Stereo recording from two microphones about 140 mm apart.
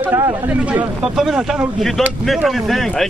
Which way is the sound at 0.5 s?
10° right (ahead or behind).